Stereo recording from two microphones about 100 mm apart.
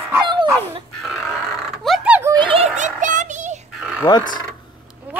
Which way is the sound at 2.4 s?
60° right (ahead or behind).